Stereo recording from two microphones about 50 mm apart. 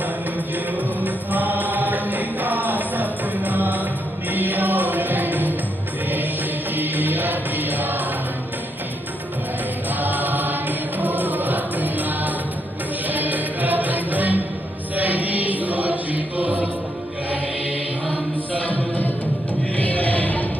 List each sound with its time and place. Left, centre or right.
1.0 s chant: right
4.3 s music: right
6.7 s music: right
9.9 s music: right
15.0 s chant: right
19.8 s music: left